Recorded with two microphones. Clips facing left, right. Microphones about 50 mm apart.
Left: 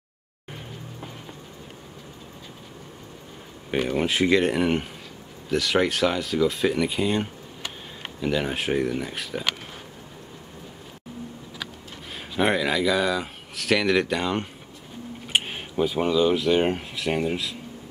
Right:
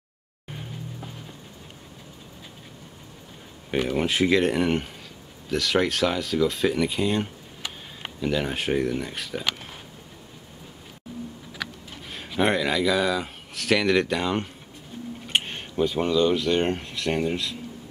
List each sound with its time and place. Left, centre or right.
3.7 s speech: centre
12.1 s speech: centre